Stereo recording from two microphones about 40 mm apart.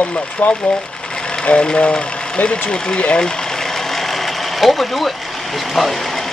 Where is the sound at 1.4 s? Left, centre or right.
Left.